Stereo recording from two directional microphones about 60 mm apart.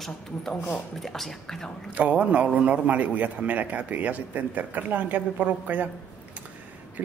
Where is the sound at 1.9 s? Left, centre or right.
Right.